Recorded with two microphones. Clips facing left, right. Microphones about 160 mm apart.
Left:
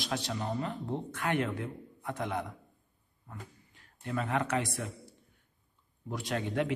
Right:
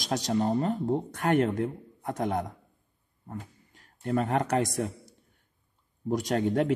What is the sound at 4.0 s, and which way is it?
A man's voice, 40° right (ahead or behind).